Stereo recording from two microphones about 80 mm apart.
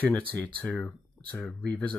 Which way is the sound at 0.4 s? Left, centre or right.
Centre.